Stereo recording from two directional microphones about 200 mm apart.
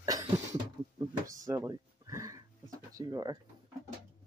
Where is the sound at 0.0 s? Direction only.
15° right (ahead or behind).